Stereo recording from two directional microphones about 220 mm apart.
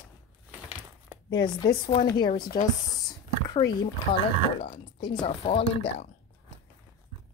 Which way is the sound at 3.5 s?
20° left (ahead or behind).